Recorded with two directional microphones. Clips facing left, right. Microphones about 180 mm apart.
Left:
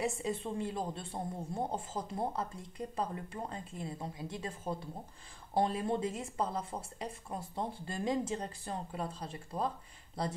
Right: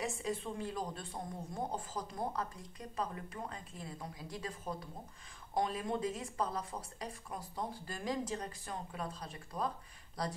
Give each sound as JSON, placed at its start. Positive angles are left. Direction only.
{"t": 0.2, "sound": "speech", "side_deg": 25}